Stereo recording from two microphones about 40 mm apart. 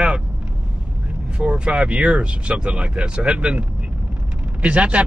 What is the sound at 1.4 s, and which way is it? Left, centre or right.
Speech, right.